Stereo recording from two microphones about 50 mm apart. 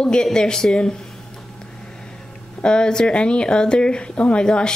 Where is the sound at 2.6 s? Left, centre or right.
Centre.